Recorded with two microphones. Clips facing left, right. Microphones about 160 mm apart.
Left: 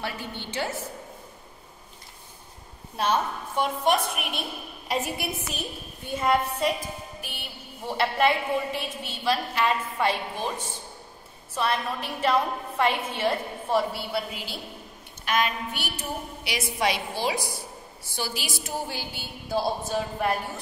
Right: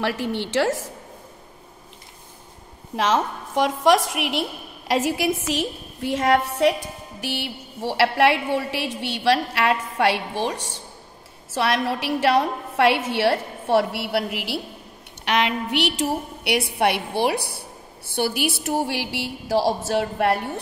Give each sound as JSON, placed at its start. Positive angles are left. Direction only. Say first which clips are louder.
{"t": 0.0, "sound": "a woman's voice", "louder": "right 10 dB", "side_deg": -90}
{"t": 3.0, "sound": "a woman's voice", "louder": "right 4 dB", "side_deg": -90}